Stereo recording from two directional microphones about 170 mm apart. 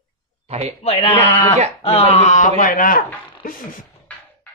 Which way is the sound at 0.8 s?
30° left (ahead or behind).